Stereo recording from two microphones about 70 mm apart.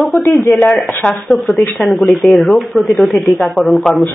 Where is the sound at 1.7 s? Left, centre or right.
Centre.